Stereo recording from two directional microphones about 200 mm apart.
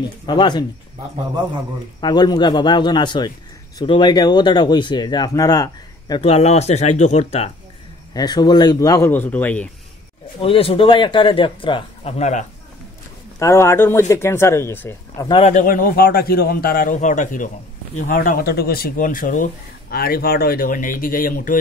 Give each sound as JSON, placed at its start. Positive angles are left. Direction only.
{"t": 0.3, "sound": "a man's voice", "side_deg": 20}
{"t": 2.0, "sound": "a man's voice", "side_deg": 20}
{"t": 8.1, "sound": "speech", "side_deg": 20}
{"t": 10.4, "sound": "a man's voice", "side_deg": 30}
{"t": 13.4, "sound": "speech", "side_deg": 15}
{"t": 15.3, "sound": "speech", "side_deg": 40}